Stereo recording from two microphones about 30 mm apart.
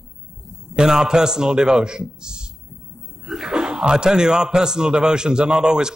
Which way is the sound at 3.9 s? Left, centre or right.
Right.